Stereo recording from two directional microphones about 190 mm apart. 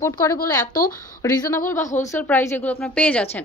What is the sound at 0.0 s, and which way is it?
A woman's voice, 15° left (ahead or behind).